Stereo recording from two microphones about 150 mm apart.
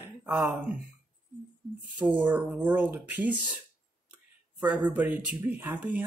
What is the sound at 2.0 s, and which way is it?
Speech, 10° right (ahead or behind).